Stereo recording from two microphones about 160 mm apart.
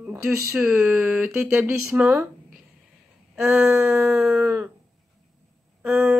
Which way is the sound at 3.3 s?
Centre (ahead or behind).